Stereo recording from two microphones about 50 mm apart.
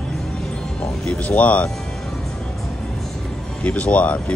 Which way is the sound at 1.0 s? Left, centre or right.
Left.